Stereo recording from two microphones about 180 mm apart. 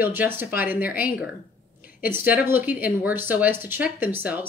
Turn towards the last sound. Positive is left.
turn(degrees=-10)  # may be behind; listen again after turning